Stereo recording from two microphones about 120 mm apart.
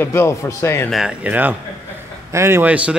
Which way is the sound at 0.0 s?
20° left (ahead or behind).